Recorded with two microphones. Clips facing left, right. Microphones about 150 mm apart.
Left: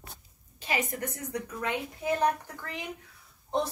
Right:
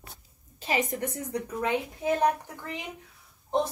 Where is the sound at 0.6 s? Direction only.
30° right (ahead or behind).